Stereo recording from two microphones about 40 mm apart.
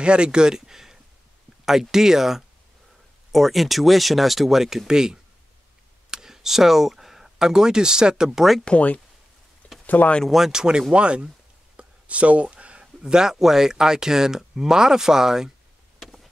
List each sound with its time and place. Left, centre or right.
0.0 s speech: right
8.6 s speech: left
10.3 s speech: centre
11.7 s a sound: right
13.0 s speech: centre